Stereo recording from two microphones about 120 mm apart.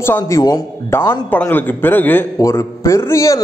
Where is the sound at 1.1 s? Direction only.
15° left (ahead or behind).